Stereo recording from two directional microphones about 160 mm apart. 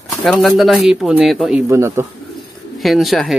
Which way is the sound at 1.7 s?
15° right (ahead or behind).